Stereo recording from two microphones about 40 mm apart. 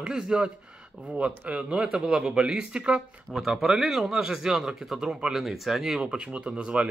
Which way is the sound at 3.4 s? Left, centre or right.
Centre.